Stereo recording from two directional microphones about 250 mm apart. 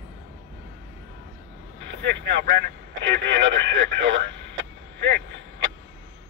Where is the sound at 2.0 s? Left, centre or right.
Right.